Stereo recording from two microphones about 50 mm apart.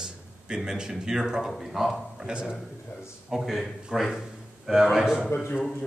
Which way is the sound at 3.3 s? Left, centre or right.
Centre.